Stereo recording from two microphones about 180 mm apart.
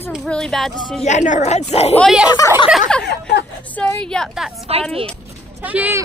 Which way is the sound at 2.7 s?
5° left (ahead or behind).